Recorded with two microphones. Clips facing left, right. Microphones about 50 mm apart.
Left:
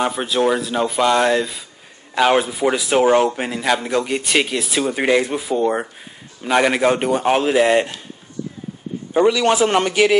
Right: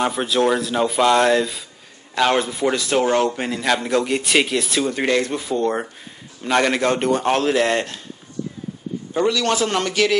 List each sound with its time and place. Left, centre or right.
0.0 s a man's voice: centre
9.1 s a man's voice: centre